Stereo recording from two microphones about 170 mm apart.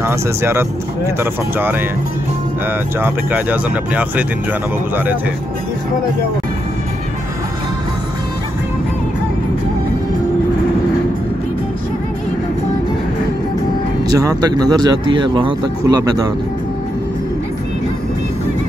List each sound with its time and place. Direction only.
0.0 s speech: 15° right (ahead or behind)
3.0 s speech: 10° right (ahead or behind)
14.0 s speech: 20° right (ahead or behind)